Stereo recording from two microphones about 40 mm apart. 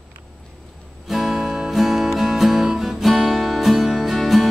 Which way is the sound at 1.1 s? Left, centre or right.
Centre.